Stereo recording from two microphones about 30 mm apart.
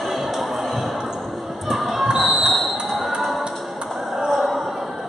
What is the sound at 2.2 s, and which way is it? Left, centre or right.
Basketball bounce, centre.